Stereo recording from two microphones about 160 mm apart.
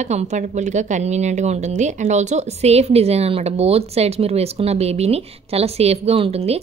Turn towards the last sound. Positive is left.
turn(degrees=-40)  # may be behind; listen again after turning